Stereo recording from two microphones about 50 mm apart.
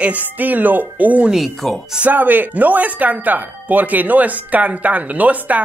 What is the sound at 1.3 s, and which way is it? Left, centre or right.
Speech, centre.